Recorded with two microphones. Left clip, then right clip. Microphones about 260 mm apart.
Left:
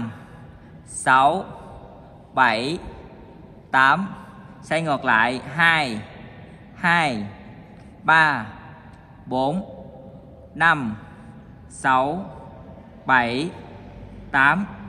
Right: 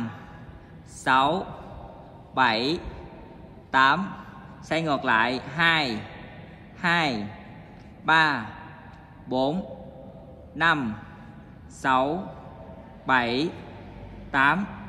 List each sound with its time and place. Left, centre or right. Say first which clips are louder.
1.0 s a man's voice: left 5 dB; left